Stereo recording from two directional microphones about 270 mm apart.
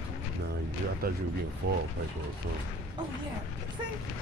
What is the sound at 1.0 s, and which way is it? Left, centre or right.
Speech, right.